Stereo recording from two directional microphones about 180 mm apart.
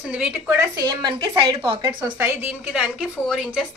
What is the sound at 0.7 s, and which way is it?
A woman's voice, 20° right (ahead or behind).